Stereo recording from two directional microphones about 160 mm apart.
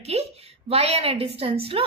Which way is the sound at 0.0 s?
40° right (ahead or behind).